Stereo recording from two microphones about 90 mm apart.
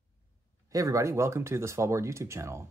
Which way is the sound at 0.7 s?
35° right (ahead or behind).